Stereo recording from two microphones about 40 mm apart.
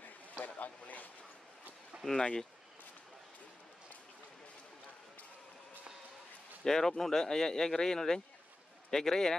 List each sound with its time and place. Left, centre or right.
0.5 s a sound: left
2.1 s speech: centre
6.6 s speech: centre